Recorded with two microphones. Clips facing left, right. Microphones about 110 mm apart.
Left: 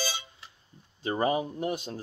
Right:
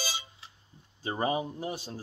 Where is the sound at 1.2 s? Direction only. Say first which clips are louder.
Left 3 dB; 25° right (ahead or behind).